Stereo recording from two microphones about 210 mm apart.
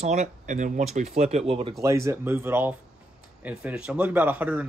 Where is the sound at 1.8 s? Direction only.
15° right (ahead or behind).